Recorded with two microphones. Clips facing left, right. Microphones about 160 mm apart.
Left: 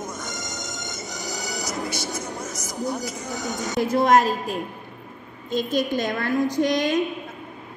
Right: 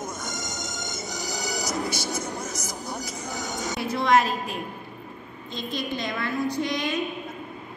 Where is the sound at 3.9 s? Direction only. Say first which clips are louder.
Left 3 dB; 45° left (ahead or behind).